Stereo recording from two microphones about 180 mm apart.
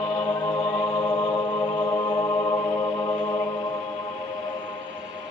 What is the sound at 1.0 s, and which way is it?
Chant, 25° left (ahead or behind).